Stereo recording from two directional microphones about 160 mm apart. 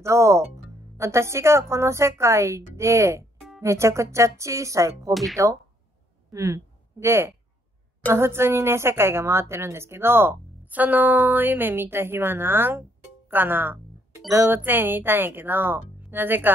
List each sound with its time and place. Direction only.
0.0 s a woman's voice: 20° right (ahead or behind)
3.3 s music: centre (ahead or behind)
3.6 s speech: 15° right (ahead or behind)
5.1 s speech: centre (ahead or behind)
6.3 s a woman's voice: 20° right (ahead or behind)
13.3 s music: 15° right (ahead or behind)
14.3 s a woman's voice: 15° right (ahead or behind)